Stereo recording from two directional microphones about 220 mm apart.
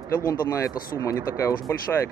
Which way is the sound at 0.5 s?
15° left (ahead or behind).